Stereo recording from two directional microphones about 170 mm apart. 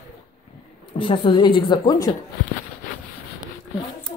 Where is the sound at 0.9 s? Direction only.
30° left (ahead or behind).